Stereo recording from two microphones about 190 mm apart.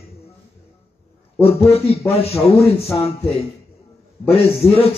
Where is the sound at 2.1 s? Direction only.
30° left (ahead or behind).